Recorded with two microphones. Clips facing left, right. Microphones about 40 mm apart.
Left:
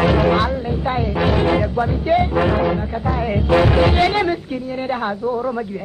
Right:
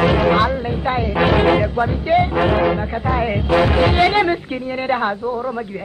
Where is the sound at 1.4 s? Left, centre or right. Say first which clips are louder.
Right 2 dB; right.